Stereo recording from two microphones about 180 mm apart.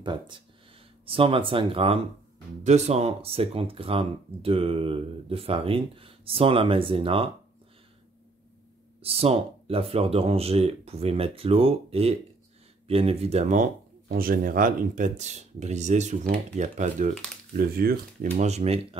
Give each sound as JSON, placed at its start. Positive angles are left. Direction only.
{"t": 0.0, "sound": "speech", "side_deg": -25}
{"t": 9.0, "sound": "speech", "side_deg": -35}
{"t": 17.6, "sound": "speech", "side_deg": -55}
{"t": 18.3, "sound": "speech", "side_deg": -40}